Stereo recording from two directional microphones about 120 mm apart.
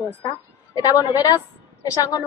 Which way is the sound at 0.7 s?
30° left (ahead or behind).